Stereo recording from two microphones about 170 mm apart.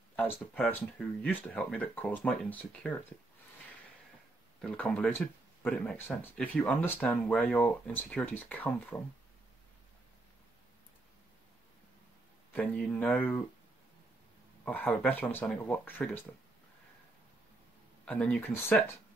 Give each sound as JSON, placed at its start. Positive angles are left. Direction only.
{"t": 0.6, "sound": "speech", "side_deg": 10}
{"t": 4.6, "sound": "speech", "side_deg": 10}
{"t": 12.5, "sound": "speech", "side_deg": 5}
{"t": 14.6, "sound": "speech", "side_deg": 10}
{"t": 18.0, "sound": "speech", "side_deg": 5}